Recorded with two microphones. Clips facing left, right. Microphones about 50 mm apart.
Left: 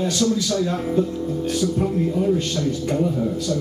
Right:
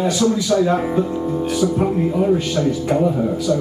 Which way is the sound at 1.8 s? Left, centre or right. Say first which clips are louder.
Right 3 dB; right.